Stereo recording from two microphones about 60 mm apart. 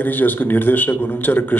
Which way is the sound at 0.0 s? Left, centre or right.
Left.